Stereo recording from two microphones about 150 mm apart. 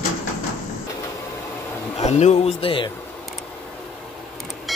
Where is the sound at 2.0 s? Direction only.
50° left (ahead or behind).